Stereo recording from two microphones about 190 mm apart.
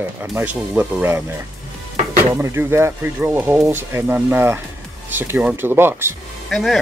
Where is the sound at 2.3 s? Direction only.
15° right (ahead or behind).